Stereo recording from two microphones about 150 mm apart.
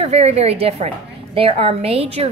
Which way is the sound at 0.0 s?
45° right (ahead or behind).